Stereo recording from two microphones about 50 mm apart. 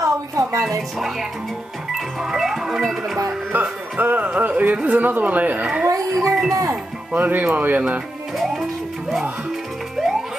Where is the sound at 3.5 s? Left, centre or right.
Right.